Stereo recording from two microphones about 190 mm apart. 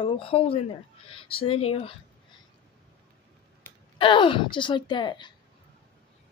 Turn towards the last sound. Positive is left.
turn(degrees=25)  # may be behind; listen again after turning